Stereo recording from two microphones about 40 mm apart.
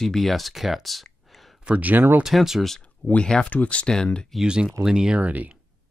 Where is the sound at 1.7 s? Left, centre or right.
Right.